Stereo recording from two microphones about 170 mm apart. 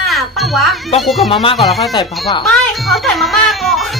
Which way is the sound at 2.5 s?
Centre (ahead or behind).